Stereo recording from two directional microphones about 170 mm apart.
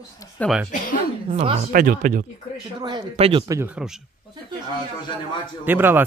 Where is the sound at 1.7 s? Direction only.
55° right (ahead or behind).